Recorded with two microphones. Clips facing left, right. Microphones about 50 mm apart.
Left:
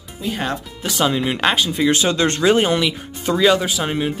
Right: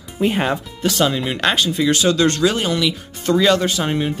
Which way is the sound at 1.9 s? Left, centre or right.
Left.